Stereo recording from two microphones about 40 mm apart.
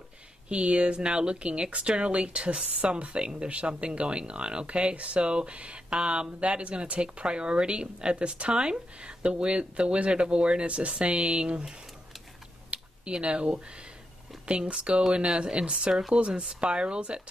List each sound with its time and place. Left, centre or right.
0.5 s speech: right
12.7 s a sound: right
14.4 s speech: right